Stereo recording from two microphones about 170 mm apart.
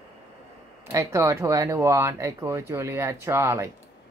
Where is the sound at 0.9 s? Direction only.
15° right (ahead or behind).